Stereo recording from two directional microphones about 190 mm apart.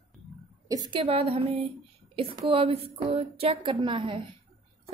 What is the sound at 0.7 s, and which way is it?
A woman's voice, 25° right (ahead or behind).